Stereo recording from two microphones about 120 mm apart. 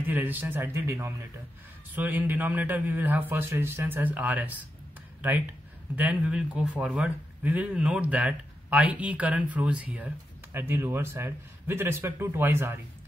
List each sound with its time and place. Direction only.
0.0 s a man's voice: 15° right (ahead or behind)
5.9 s a man's voice: 10° right (ahead or behind)